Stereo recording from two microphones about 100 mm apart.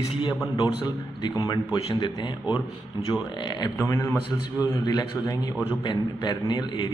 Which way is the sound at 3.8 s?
25° left (ahead or behind).